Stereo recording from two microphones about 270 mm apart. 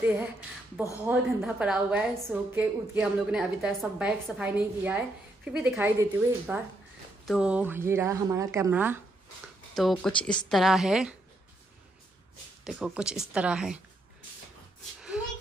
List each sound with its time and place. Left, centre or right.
0.0 s a woman's voice: centre
12.6 s a woman's voice: centre
15.0 s a sound: centre